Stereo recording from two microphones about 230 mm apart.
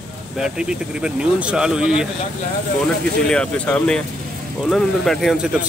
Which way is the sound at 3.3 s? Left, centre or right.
Centre.